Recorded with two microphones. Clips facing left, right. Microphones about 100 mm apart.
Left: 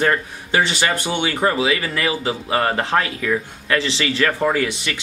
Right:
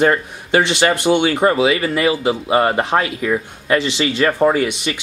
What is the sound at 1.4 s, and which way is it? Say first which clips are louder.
Speech: right 4 dB; 20° right (ahead or behind).